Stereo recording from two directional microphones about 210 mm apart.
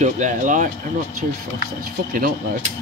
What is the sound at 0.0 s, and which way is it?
Speech, 35° right (ahead or behind).